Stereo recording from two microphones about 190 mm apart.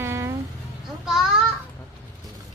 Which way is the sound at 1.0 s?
5° right (ahead or behind).